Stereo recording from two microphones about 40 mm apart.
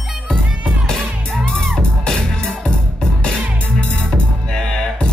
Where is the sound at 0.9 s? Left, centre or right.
Centre.